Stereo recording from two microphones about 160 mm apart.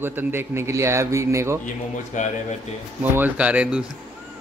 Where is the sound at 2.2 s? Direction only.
50° left (ahead or behind).